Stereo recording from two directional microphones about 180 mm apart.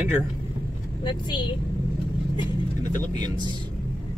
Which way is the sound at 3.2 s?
25° right (ahead or behind).